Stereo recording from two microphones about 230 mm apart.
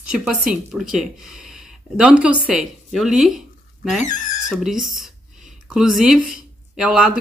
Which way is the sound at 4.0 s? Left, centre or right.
Left.